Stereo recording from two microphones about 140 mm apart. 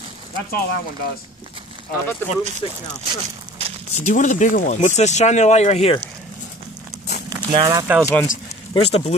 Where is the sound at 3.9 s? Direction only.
60° left (ahead or behind).